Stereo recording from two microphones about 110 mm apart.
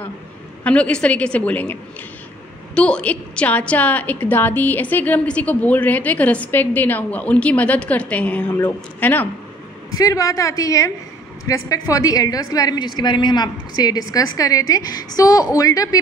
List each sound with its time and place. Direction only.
0.7 s a woman's voice: 10° left (ahead or behind)
9.8 s a woman's voice: 30° left (ahead or behind)